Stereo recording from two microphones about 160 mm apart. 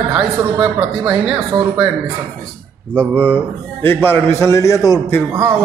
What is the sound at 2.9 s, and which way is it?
A man's voice, 10° left (ahead or behind).